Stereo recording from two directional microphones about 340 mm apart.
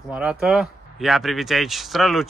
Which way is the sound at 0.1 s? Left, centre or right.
Centre.